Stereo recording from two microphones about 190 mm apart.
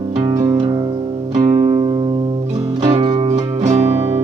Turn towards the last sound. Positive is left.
turn(degrees=-35)  # may be behind; listen again after turning